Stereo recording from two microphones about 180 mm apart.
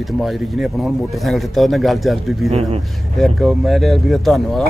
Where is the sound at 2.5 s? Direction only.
35° right (ahead or behind).